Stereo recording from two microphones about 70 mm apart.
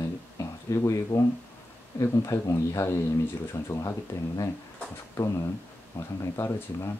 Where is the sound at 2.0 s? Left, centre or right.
Left.